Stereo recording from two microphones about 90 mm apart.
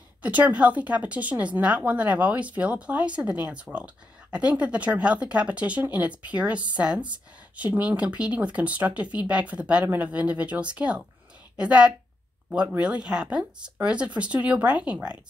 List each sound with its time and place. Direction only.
0.2 s a woman's voice: 15° right (ahead or behind)